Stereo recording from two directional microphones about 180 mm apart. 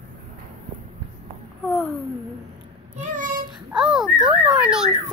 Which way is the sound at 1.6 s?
Centre (ahead or behind).